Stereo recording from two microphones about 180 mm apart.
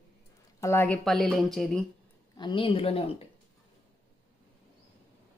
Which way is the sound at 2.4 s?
25° left (ahead or behind).